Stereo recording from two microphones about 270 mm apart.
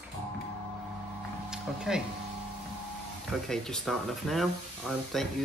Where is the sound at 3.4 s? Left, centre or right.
Centre.